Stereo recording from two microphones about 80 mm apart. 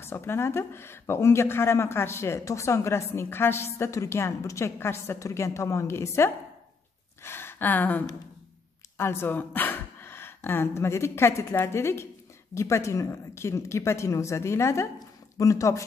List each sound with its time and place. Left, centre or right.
0.0 s speech: left